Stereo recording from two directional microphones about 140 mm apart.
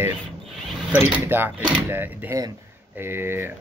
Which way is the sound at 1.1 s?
15° right (ahead or behind).